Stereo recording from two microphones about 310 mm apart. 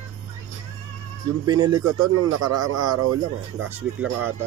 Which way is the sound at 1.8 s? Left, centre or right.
Right.